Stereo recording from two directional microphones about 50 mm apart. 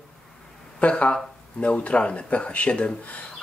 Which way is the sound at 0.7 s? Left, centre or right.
Left.